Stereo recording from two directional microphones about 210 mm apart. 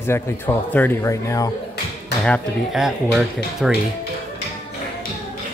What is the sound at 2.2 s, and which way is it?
Speech, centre (ahead or behind).